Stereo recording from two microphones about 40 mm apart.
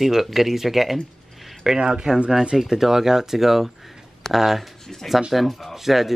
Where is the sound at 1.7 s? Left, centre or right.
Right.